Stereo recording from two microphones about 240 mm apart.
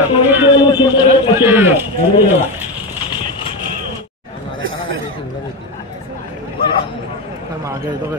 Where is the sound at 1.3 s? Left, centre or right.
Centre.